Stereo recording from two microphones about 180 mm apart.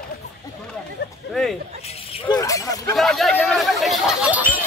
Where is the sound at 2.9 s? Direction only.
Centre (ahead or behind).